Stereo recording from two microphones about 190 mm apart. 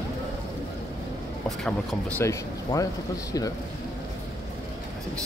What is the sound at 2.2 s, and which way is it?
Speech, 15° left (ahead or behind).